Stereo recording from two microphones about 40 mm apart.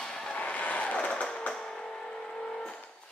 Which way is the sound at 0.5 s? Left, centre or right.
Left.